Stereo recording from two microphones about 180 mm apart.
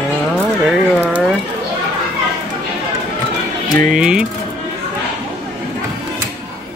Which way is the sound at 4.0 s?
5° right (ahead or behind).